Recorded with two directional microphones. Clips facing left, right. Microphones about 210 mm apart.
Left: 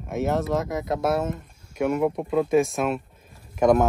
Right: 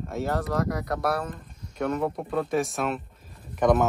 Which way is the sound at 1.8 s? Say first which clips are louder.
Left 4 dB; 10° left (ahead or behind).